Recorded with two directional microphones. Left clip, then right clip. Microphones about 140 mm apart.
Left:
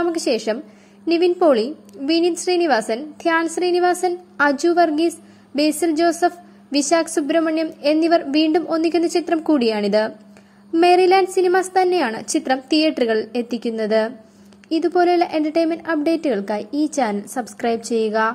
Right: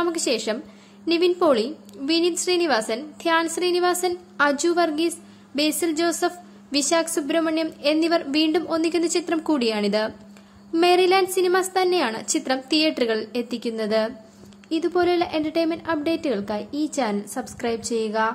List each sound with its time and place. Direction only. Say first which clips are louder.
0.0 s a woman's voice: left 3 dB; 15° left (ahead or behind)